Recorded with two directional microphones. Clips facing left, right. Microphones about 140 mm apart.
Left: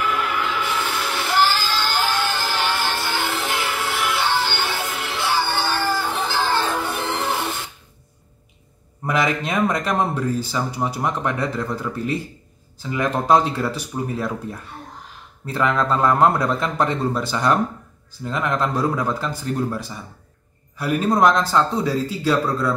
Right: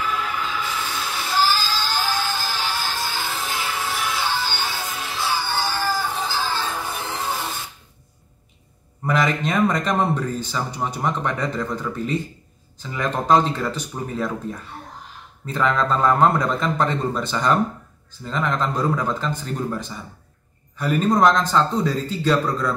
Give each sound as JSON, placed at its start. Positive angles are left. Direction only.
{"t": 0.0, "sound": "music", "side_deg": 65}
{"t": 9.0, "sound": "speech", "side_deg": 5}
{"t": 15.4, "sound": "speech", "side_deg": 5}